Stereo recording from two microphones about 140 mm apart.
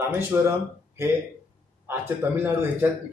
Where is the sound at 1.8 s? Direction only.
15° right (ahead or behind).